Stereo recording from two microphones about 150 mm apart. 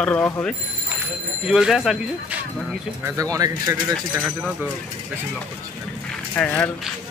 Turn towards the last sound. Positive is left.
turn(degrees=10)  # may be behind; listen again after turning